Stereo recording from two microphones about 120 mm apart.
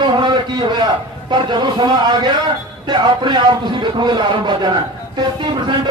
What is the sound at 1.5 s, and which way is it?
A man's voice, 40° right (ahead or behind).